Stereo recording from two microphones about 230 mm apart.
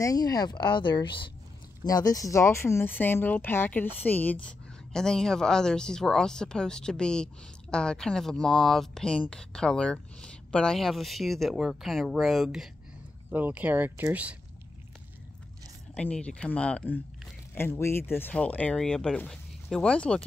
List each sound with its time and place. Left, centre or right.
0.0 s a woman's voice: centre
15.9 s speech: centre